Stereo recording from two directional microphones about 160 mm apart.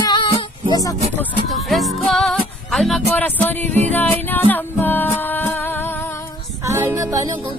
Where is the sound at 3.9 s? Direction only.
10° left (ahead or behind).